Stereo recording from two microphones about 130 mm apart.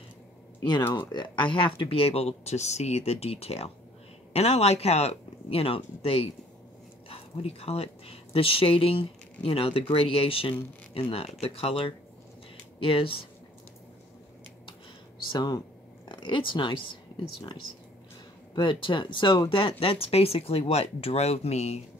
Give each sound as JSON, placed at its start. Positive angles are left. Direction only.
{"t": 0.6, "sound": "speech", "side_deg": 30}
{"t": 15.3, "sound": "speech", "side_deg": 30}
{"t": 19.8, "sound": "speech", "side_deg": 45}